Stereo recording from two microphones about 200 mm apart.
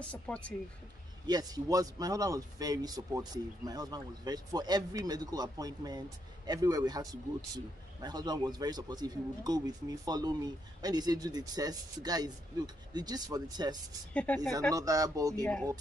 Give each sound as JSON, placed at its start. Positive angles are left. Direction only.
{"t": 0.1, "sound": "speech", "side_deg": 5}
{"t": 1.2, "sound": "a man's voice", "side_deg": -20}
{"t": 14.1, "sound": "speech", "side_deg": 5}
{"t": 14.7, "sound": "speech", "side_deg": -15}